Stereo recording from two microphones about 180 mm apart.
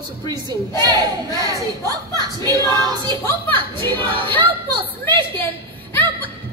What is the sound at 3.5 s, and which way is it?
A woman's voice, 25° right (ahead or behind).